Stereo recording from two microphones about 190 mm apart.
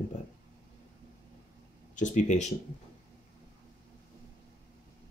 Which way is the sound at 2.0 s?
40° left (ahead or behind).